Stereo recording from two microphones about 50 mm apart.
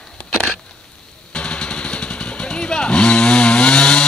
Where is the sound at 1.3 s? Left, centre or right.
Centre.